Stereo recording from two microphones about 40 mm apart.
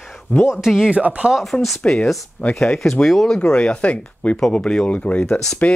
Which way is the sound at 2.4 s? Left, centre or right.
Left.